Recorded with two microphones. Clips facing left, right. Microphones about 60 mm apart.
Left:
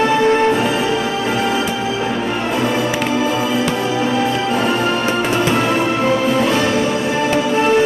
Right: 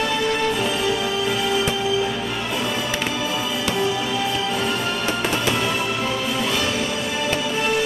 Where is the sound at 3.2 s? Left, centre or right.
Left.